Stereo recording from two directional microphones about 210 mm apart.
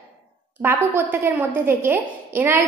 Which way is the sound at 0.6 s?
10° right (ahead or behind).